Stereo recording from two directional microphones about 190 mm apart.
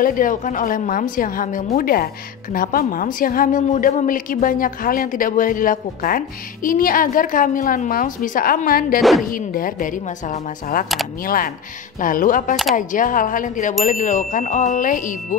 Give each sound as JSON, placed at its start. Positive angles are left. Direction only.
{"t": 0.0, "sound": "a woman's voice", "side_deg": 45}